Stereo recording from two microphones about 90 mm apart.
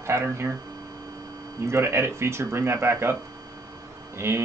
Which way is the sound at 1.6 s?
30° right (ahead or behind).